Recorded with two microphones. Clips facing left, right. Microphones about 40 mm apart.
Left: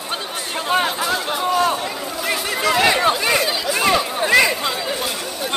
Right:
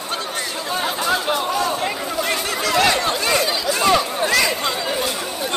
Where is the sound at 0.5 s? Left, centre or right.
Left.